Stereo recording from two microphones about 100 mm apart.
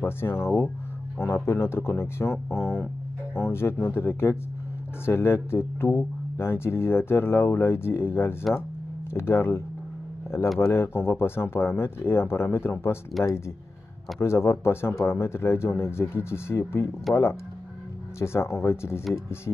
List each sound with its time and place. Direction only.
0.0 s speech: 25° left (ahead or behind)
14.2 s speech: 25° left (ahead or behind)